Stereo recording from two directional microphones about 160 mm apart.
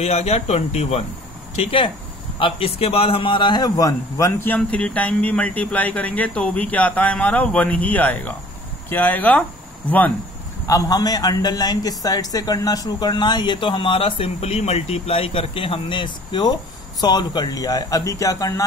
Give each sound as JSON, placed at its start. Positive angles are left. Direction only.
{"t": 0.0, "sound": "a man's voice", "side_deg": 40}
{"t": 10.7, "sound": "speech", "side_deg": 25}